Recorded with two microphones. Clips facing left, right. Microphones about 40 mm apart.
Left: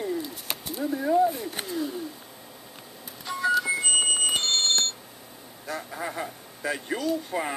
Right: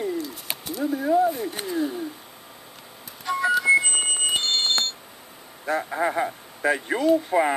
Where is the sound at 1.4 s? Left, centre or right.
Centre.